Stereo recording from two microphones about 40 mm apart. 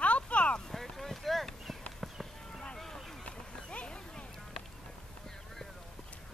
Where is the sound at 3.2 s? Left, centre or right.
Left.